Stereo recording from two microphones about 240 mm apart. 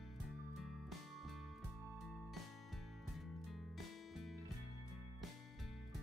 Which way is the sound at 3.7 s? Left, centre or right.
Centre.